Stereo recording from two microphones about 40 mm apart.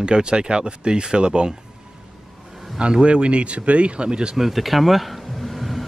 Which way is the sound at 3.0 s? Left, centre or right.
Right.